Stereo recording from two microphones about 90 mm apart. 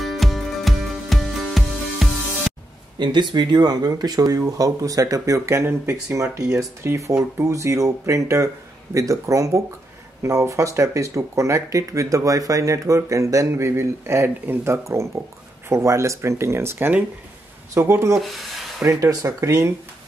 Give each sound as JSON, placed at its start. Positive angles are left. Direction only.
{"t": 0.0, "sound": "music", "side_deg": 0}
{"t": 3.0, "sound": "speech", "side_deg": -55}
{"t": 18.2, "sound": "speech", "side_deg": 0}
{"t": 18.9, "sound": "speech", "side_deg": -35}